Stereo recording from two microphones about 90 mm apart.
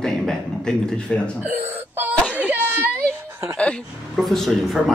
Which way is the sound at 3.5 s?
10° left (ahead or behind).